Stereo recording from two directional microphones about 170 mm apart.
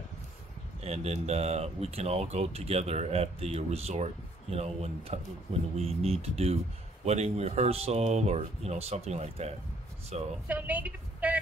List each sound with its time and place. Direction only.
0.7 s speech: 35° right (ahead or behind)
10.5 s a woman's voice: 10° right (ahead or behind)